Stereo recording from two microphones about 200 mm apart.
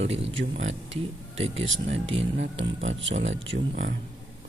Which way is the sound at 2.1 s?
30° right (ahead or behind).